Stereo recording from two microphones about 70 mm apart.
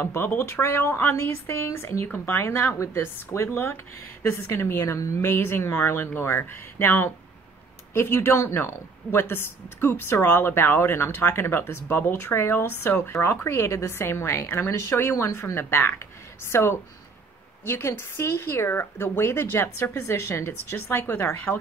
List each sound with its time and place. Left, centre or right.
0.0 s speech: left
5.3 s speech: left
15.5 s speech: left